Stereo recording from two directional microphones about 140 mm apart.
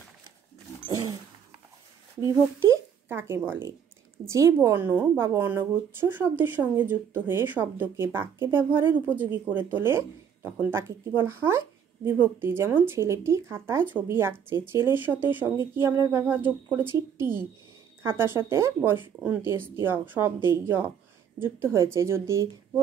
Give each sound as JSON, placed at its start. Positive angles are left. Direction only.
{"t": 3.1, "sound": "a woman's voice", "side_deg": -15}